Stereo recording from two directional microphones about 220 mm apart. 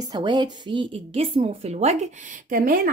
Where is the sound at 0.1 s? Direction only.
20° right (ahead or behind).